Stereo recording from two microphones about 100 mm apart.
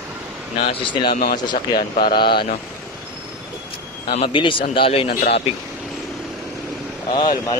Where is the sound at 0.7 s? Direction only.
50° left (ahead or behind).